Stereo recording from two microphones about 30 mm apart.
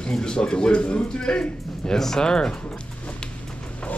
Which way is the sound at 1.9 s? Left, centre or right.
Centre.